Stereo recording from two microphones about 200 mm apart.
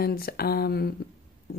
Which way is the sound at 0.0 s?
50° left (ahead or behind).